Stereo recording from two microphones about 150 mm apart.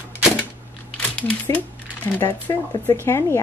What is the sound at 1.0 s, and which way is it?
A woman's voice, 10° left (ahead or behind).